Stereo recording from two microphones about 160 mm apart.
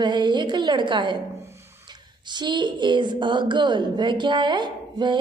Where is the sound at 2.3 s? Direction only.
30° right (ahead or behind).